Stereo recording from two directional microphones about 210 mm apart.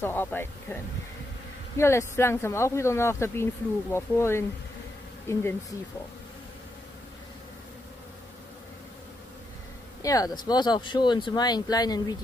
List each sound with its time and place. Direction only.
0.0 s speech: 10° left (ahead or behind)
1.8 s speech: 10° left (ahead or behind)
10.0 s speech: 15° left (ahead or behind)